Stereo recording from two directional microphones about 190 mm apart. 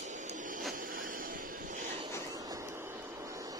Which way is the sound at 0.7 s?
45° right (ahead or behind).